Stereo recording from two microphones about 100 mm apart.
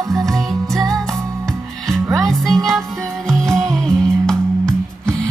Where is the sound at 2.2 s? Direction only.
5° left (ahead or behind).